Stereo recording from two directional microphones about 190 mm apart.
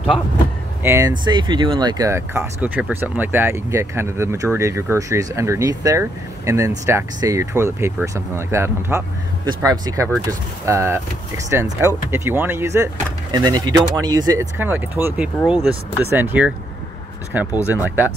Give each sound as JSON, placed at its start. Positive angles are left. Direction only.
{"t": 0.8, "sound": "speech", "side_deg": -15}